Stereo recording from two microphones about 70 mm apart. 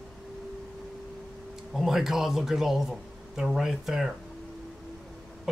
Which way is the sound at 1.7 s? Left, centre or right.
Centre.